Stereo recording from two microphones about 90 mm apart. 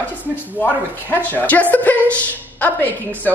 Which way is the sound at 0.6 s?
20° left (ahead or behind).